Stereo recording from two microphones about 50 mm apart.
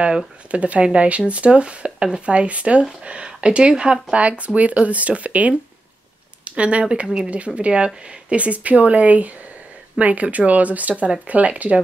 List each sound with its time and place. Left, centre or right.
0.5 s speech: right